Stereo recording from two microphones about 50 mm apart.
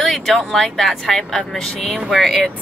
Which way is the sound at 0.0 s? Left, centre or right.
Centre.